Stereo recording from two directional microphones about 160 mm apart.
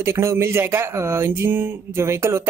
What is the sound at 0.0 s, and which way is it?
Speech, 15° right (ahead or behind).